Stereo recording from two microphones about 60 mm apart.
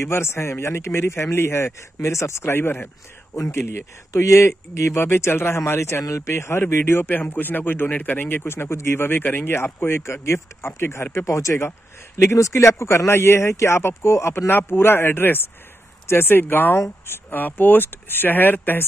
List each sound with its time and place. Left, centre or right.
0.0 s speech: left
2.5 s speech: left
4.1 s speech: left
6.8 s speech: left
8.5 s speech: left